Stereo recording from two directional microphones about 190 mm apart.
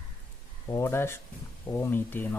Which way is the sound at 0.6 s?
15° left (ahead or behind).